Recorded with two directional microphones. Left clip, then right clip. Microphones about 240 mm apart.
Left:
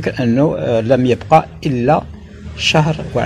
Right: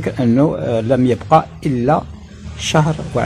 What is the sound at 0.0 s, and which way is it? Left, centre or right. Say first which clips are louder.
Speech: even; centre.